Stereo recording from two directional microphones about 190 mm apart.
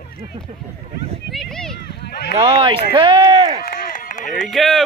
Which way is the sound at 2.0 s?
60° left (ahead or behind).